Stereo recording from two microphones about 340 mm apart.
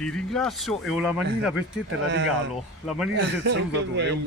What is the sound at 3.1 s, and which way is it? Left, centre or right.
A man's voice, right.